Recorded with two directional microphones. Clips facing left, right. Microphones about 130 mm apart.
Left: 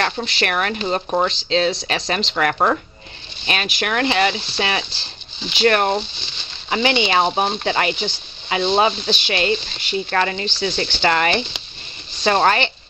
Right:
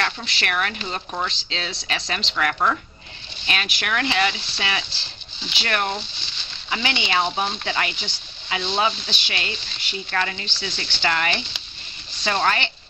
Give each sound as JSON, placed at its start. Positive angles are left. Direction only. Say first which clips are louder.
{"t": 0.0, "sound": "speech", "louder": "left 5 dB", "side_deg": 40}
{"t": 3.4, "sound": "speech", "louder": "left 5 dB", "side_deg": 25}
{"t": 3.9, "sound": "speech", "louder": "left 4 dB", "side_deg": 35}
{"t": 6.7, "sound": "speech", "louder": "left 7 dB", "side_deg": 30}
{"t": 7.9, "sound": "speech", "louder": "left 10 dB", "side_deg": 20}
{"t": 8.5, "sound": "speech", "louder": "left 6 dB", "side_deg": 35}
{"t": 9.1, "sound": "speech", "louder": "left 11 dB", "side_deg": 25}